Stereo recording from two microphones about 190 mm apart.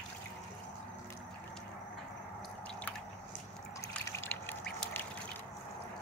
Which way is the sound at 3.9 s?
15° left (ahead or behind).